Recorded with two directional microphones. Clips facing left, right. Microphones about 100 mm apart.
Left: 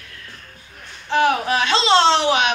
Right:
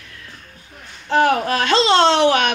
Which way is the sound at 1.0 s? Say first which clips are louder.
Right 2 dB; 45° right (ahead or behind).